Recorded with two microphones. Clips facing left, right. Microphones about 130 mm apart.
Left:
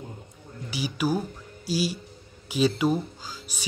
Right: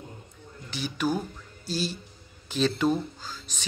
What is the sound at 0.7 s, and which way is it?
Speech, 10° left (ahead or behind).